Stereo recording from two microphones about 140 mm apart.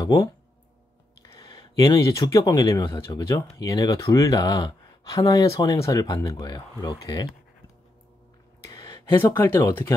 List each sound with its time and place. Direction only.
0.0 s speech: 25° left (ahead or behind)
8.6 s a sound: 25° left (ahead or behind)
9.2 s speech: 15° left (ahead or behind)